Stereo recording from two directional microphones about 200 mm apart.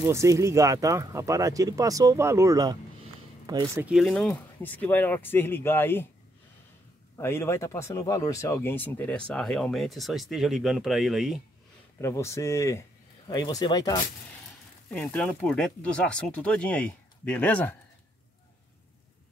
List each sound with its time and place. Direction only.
0.0 s speech: 15° right (ahead or behind)
3.8 s speech: centre (ahead or behind)
7.2 s speech: 15° left (ahead or behind)
12.0 s speech: 15° left (ahead or behind)
14.9 s speech: 5° left (ahead or behind)